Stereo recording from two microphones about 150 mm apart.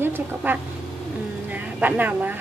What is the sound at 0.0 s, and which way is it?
Speech, 15° right (ahead or behind).